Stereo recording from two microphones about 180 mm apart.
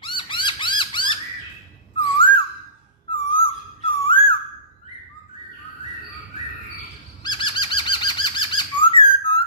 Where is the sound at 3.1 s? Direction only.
30° left (ahead or behind).